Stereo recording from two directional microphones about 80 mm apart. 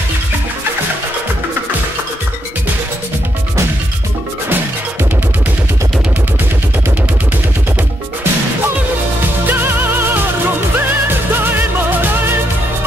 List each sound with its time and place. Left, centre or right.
9.5 s music: right